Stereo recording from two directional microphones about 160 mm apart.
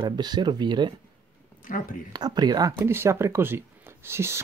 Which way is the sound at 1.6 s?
60° left (ahead or behind).